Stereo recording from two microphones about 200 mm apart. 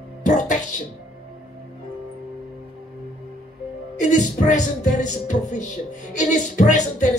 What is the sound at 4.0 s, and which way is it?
Music, 40° left (ahead or behind).